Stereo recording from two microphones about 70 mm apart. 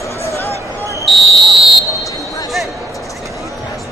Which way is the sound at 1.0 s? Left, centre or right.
Centre.